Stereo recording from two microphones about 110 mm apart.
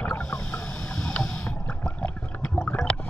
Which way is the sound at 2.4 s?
10° left (ahead or behind).